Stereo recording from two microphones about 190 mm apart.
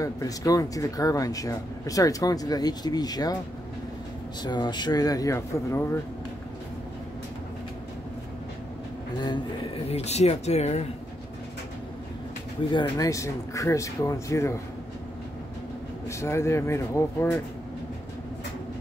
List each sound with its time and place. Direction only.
0.0 s speech: 20° left (ahead or behind)
4.4 s speech: 20° left (ahead or behind)
9.8 s speech: 35° left (ahead or behind)
12.7 s speech: 20° left (ahead or behind)
16.1 s speech: 15° left (ahead or behind)